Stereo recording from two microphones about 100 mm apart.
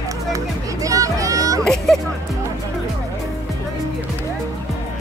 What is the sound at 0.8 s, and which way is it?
Music, 35° right (ahead or behind).